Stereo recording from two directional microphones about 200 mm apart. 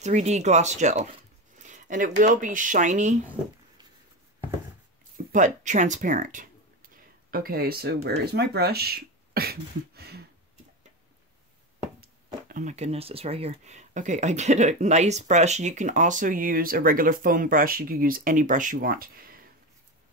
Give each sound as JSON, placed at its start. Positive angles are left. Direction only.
{"t": 0.0, "sound": "speech", "side_deg": -35}
{"t": 5.1, "sound": "speech", "side_deg": -40}
{"t": 12.3, "sound": "speech", "side_deg": -40}